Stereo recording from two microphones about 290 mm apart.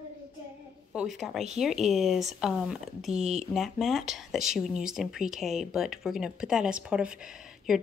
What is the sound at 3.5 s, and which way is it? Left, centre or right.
Speech, centre.